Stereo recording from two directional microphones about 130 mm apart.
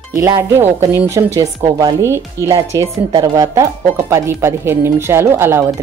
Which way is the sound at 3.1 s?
30° right (ahead or behind).